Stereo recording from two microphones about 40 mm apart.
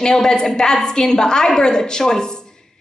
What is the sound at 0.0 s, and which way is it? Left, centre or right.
A woman's voice, centre.